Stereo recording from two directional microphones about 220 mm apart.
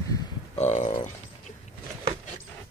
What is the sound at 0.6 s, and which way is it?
Speech, 35° left (ahead or behind).